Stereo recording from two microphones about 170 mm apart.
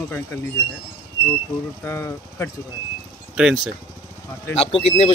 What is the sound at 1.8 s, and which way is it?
Speech, 15° left (ahead or behind).